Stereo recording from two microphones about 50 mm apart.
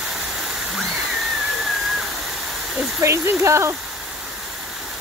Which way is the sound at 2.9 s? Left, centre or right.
Right.